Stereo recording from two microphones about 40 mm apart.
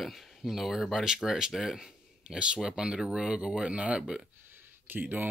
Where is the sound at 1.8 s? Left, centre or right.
Centre.